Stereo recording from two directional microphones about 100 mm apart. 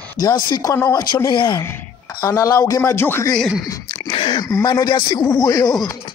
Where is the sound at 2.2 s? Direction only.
35° left (ahead or behind).